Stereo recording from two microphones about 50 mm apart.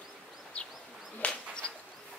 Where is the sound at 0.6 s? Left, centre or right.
Left.